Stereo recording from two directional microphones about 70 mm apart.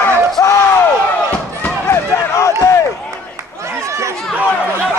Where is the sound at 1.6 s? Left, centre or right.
Left.